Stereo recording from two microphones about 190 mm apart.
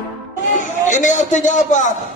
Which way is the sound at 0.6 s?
40° left (ahead or behind).